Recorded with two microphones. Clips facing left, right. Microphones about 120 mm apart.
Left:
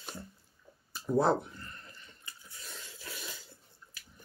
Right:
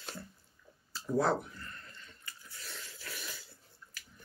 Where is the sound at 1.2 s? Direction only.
25° left (ahead or behind).